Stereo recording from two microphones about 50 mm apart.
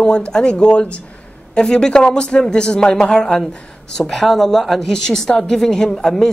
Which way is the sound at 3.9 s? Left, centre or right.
Centre.